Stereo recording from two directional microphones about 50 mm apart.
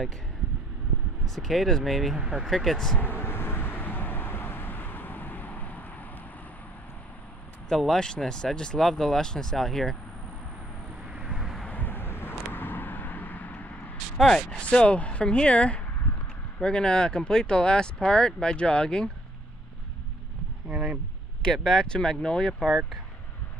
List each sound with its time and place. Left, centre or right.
1.2 s speech: centre
3.0 s vehicle: left
7.8 s speech: centre
11.2 s vehicle: centre
11.7 s vehicle: left
14.5 s speech: left
20.7 s a sound: right
21.4 s speech: centre
22.5 s speech: centre